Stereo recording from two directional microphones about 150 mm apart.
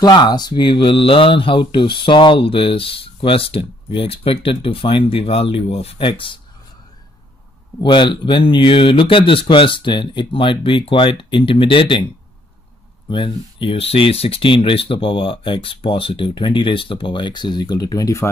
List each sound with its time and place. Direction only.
0.0 s speech: 30° left (ahead or behind)
7.8 s speech: 30° left (ahead or behind)
13.1 s speech: 35° left (ahead or behind)